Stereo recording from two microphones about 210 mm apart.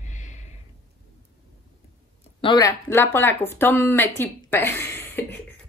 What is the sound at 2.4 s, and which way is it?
Speech, 20° left (ahead or behind).